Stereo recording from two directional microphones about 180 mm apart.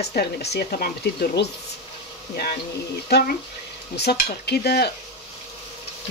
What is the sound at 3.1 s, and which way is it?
Speech, 65° left (ahead or behind).